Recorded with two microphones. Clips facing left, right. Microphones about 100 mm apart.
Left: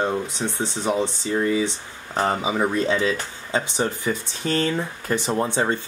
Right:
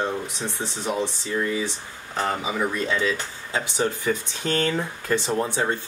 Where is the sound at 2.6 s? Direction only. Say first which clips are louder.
Left 3 dB; 25° left (ahead or behind).